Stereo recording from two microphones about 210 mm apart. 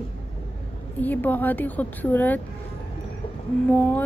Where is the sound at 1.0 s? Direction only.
10° left (ahead or behind).